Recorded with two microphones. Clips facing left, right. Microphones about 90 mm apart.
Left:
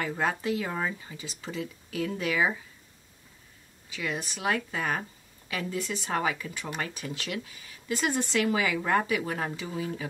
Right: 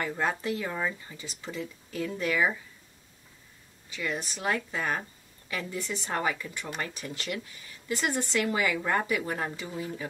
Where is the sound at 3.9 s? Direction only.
10° left (ahead or behind).